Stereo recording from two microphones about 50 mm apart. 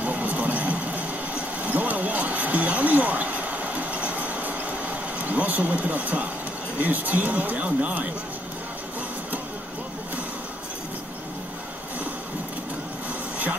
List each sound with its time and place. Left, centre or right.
0.0 s vehicle: right
5.2 s speech: right